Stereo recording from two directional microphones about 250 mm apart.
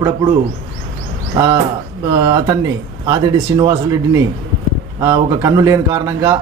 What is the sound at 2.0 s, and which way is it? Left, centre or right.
Speech, centre.